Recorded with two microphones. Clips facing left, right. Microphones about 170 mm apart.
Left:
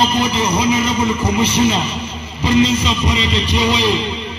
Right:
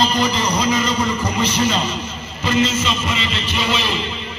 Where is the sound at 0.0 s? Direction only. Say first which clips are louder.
Left 2 dB; 10° left (ahead or behind).